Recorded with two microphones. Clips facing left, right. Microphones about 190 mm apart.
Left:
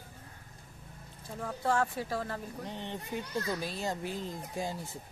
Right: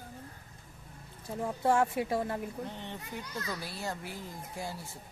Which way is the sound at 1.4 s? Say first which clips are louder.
Right 3 dB; 20° right (ahead or behind).